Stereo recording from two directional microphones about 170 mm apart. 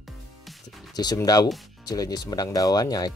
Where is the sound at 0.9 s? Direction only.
25° left (ahead or behind).